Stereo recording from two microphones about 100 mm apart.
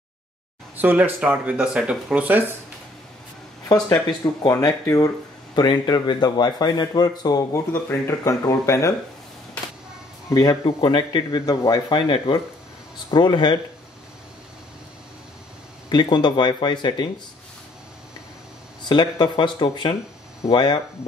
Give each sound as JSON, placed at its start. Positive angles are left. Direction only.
{"t": 0.7, "sound": "speech", "side_deg": -20}
{"t": 3.6, "sound": "speech", "side_deg": 40}
{"t": 5.5, "sound": "speech", "side_deg": 45}
{"t": 10.5, "sound": "speech", "side_deg": 60}
{"t": 13.1, "sound": "speech", "side_deg": 50}
{"t": 15.9, "sound": "speech", "side_deg": 50}
{"t": 18.9, "sound": "speech", "side_deg": 50}